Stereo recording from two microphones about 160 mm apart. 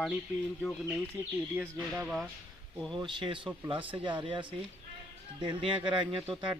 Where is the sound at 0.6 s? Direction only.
Centre (ahead or behind).